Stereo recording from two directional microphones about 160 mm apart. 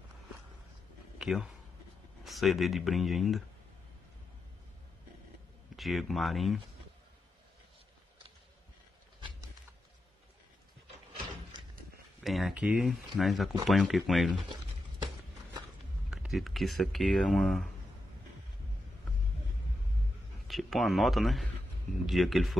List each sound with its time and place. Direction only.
1.1 s a sound: 5° right (ahead or behind)
2.2 s speech: centre (ahead or behind)
5.8 s speech: centre (ahead or behind)
12.2 s speech: centre (ahead or behind)
16.1 s speech: centre (ahead or behind)
20.4 s a man's voice: centre (ahead or behind)